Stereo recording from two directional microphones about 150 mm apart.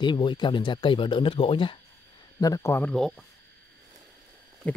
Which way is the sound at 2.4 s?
20° left (ahead or behind).